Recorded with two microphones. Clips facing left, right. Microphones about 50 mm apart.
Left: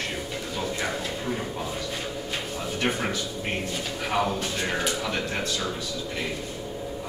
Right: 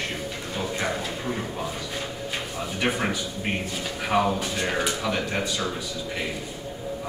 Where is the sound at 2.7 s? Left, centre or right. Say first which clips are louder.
Right 2 dB; centre.